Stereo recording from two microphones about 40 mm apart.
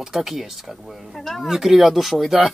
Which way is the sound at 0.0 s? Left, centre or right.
Centre.